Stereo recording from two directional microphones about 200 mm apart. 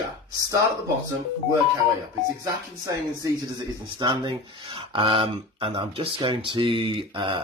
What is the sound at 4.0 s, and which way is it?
Speech, 25° right (ahead or behind).